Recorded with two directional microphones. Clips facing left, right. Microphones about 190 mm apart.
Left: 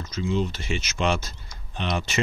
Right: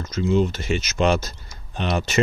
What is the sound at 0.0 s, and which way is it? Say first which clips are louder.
Speech: right 6 dB; 45° right (ahead or behind).